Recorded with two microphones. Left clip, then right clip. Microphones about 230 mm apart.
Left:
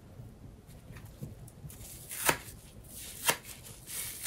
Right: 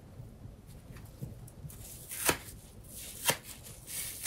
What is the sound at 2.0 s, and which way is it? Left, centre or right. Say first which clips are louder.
Chopping: left 2 dB; centre.